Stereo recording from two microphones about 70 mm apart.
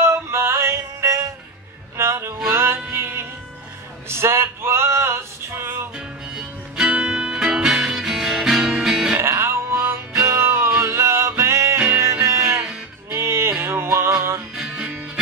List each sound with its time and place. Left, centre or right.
0.0 s music: right
4.1 s a sound: right
5.9 s music: centre
9.2 s music: right
14.5 s music: centre